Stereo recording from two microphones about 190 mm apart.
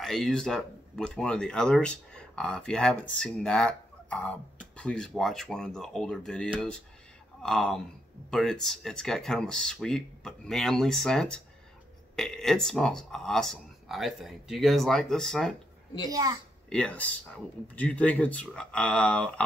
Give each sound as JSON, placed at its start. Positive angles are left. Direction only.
{"t": 0.0, "sound": "speech", "side_deg": 0}
{"t": 16.1, "sound": "a child's voice", "side_deg": -20}
{"t": 16.6, "sound": "speech", "side_deg": 5}